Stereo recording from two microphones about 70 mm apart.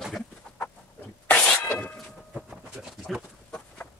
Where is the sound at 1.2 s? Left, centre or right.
Left.